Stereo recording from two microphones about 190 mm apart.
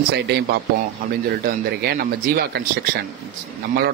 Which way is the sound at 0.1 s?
60° right (ahead or behind).